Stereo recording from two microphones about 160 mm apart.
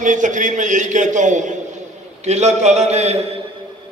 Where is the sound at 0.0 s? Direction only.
50° right (ahead or behind).